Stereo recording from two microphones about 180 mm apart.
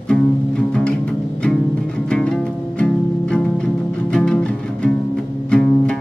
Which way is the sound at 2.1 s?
5° left (ahead or behind).